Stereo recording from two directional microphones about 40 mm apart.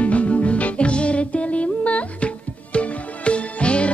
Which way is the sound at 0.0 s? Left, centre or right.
Left.